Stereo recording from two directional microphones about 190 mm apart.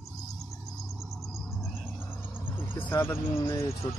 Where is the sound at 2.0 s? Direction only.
10° left (ahead or behind).